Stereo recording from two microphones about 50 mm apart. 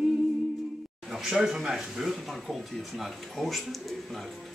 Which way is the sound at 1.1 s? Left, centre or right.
Centre.